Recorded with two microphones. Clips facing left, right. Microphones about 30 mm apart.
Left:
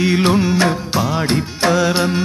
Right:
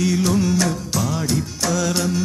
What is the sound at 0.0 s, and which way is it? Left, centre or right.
Music, left.